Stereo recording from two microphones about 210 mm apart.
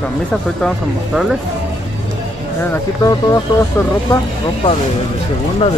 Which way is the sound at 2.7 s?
15° left (ahead or behind).